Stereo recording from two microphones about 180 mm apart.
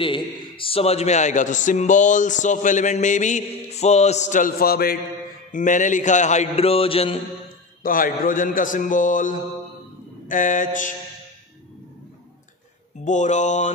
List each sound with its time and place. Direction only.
0.0 s a man's voice: 25° left (ahead or behind); by 4.9 s 55° left (ahead or behind)
5.5 s a man's voice: 45° left (ahead or behind)
7.8 s a man's voice: 50° left (ahead or behind)
13.0 s a man's voice: 40° left (ahead or behind)